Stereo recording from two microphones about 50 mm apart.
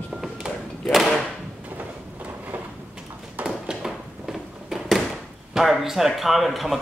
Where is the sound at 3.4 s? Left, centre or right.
Right.